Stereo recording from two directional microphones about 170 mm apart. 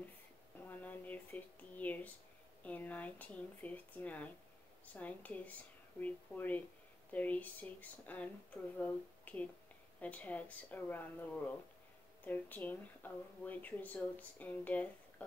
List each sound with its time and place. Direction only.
0.7 s speech: 10° left (ahead or behind)